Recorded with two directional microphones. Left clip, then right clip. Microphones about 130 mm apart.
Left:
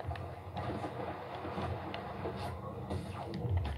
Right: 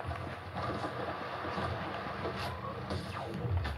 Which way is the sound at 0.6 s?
5° right (ahead or behind).